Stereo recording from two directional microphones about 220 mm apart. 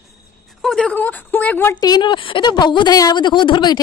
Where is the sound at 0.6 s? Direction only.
5° left (ahead or behind).